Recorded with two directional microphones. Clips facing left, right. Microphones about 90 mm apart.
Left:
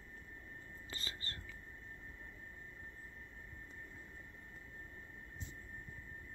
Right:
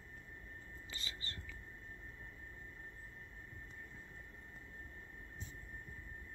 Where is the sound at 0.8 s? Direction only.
40° left (ahead or behind).